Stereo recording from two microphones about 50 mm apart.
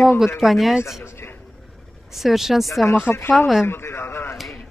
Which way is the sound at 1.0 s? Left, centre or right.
Left.